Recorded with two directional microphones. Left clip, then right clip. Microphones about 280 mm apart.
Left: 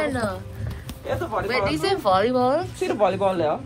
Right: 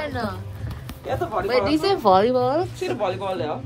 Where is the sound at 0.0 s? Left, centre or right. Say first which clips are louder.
Left 3 dB; centre.